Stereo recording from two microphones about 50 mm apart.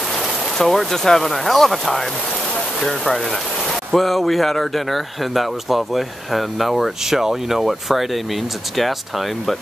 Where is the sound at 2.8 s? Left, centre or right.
Centre.